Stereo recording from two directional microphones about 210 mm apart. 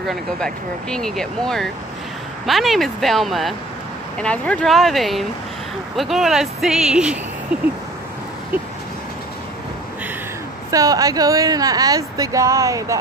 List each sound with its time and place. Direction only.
0.0 s speech: centre (ahead or behind)
10.7 s speech: 15° right (ahead or behind)